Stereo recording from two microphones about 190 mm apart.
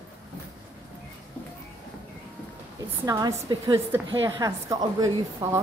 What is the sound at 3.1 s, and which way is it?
A woman's voice, 20° right (ahead or behind).